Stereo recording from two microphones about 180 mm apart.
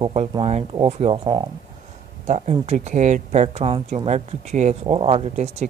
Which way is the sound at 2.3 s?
40° right (ahead or behind).